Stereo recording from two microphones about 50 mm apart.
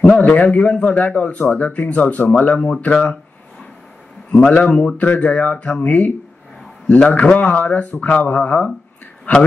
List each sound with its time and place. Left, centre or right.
0.3 s speech: left
4.3 s speech: left